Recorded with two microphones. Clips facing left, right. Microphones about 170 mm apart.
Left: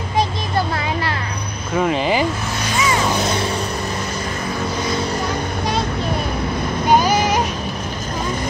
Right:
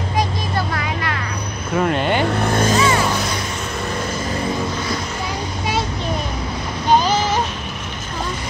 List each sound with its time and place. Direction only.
1.8 s speech: centre (ahead or behind)
2.4 s vehicle: 50° right (ahead or behind)
6.9 s a sound: 10° left (ahead or behind)